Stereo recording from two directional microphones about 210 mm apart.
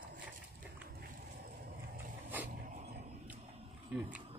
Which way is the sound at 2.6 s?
35° right (ahead or behind).